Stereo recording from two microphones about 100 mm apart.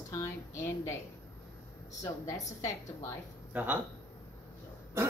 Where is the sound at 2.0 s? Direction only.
35° left (ahead or behind).